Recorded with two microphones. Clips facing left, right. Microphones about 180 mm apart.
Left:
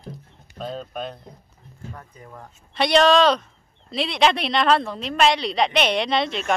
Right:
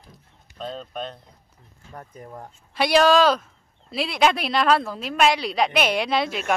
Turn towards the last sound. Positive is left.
turn(degrees=-5)  # may be behind; listen again after turning